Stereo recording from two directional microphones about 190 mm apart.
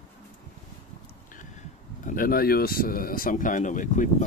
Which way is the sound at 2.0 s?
45° left (ahead or behind).